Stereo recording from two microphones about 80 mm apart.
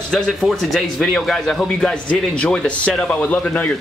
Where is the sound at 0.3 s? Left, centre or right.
Centre.